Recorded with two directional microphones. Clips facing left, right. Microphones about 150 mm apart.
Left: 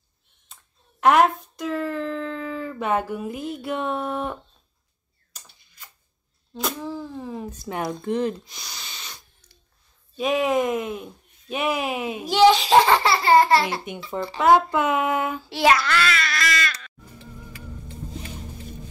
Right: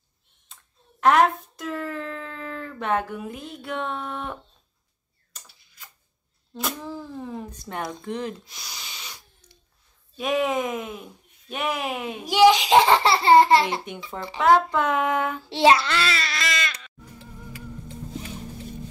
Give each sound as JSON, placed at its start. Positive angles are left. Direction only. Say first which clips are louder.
{"t": 1.0, "sound": "speech", "louder": "left 1 dB", "side_deg": 5}
{"t": 6.5, "sound": "a child's voice", "louder": "left 2 dB", "side_deg": 0}
{"t": 12.3, "sound": "a child's voice", "louder": "even", "side_deg": -15}
{"t": 13.9, "sound": "speech", "louder": "left 2 dB", "side_deg": 5}
{"t": 14.4, "sound": "child singing", "louder": "left 1 dB", "side_deg": 10}
{"t": 15.5, "sound": "baby cry", "louder": "right 1 dB", "side_deg": -25}